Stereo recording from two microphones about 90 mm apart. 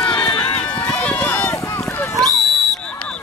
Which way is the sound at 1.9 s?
20° left (ahead or behind).